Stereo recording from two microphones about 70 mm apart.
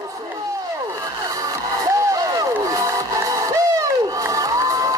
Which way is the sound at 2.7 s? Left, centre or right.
Right.